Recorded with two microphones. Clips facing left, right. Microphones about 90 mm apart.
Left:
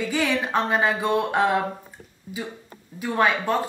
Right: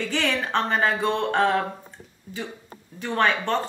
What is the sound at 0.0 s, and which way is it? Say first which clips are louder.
Speech: left 2 dB; 10° left (ahead or behind).